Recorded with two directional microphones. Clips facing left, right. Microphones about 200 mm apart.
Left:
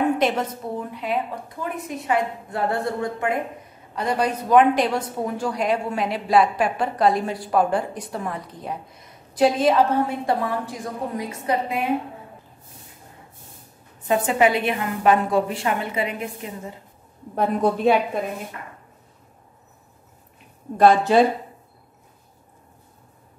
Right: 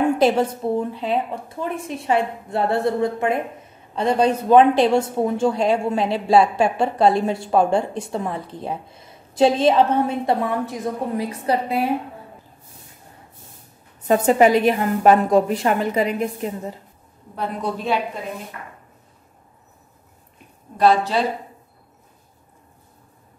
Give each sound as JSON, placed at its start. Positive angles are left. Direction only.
{"t": 0.0, "sound": "speech", "side_deg": -30}
{"t": 14.0, "sound": "a woman's voice", "side_deg": -40}
{"t": 17.4, "sound": "a woman's voice", "side_deg": 50}
{"t": 20.7, "sound": "a woman's voice", "side_deg": 50}